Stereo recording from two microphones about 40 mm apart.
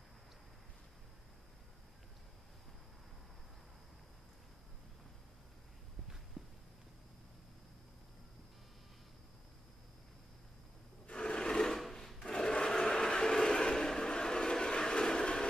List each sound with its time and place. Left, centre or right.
6.4 s walk: centre
11.1 s rub: left
11.8 s filing: centre
12.2 s a sound: left